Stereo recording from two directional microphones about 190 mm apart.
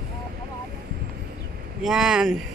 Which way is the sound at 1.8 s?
5° right (ahead or behind).